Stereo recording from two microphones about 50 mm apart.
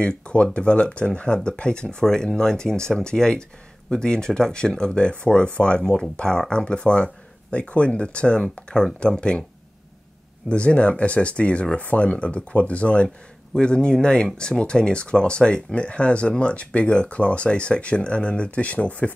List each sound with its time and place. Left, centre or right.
0.0 s speech: left
10.5 s speech: left